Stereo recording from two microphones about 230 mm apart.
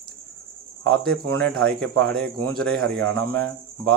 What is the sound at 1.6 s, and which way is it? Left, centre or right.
Speech, centre.